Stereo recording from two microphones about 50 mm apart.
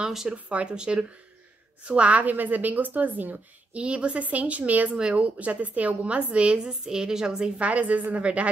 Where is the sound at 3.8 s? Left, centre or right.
Right.